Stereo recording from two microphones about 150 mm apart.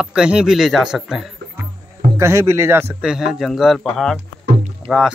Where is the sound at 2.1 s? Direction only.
20° right (ahead or behind).